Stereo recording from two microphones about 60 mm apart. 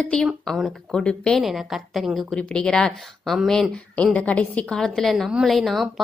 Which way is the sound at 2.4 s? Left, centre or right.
Centre.